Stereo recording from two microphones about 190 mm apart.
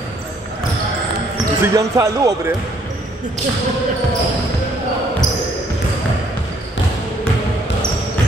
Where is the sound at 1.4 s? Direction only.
15° right (ahead or behind).